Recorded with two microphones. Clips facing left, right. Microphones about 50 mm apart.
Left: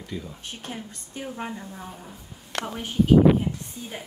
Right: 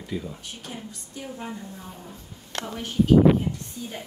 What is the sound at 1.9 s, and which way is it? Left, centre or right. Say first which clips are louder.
Speech: even; centre.